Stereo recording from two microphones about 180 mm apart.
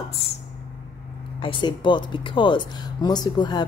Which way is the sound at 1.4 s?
25° left (ahead or behind).